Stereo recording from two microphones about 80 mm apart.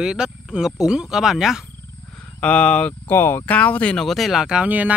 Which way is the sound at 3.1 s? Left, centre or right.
Left.